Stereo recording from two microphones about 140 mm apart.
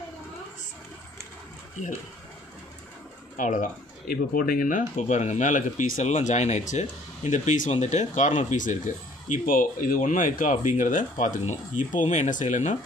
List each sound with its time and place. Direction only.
3.3 s speech: 65° left (ahead or behind)